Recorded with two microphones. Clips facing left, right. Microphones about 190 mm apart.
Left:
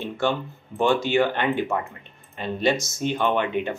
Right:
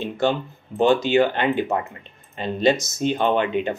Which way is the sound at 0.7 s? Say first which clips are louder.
Right 3 dB; 20° right (ahead or behind).